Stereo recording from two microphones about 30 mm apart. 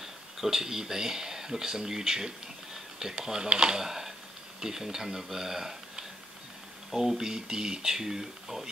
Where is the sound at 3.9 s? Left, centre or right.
Centre.